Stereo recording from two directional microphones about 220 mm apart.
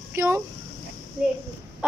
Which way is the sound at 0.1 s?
10° right (ahead or behind).